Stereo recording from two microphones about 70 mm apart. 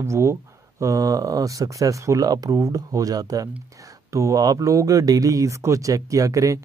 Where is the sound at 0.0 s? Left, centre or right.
Right.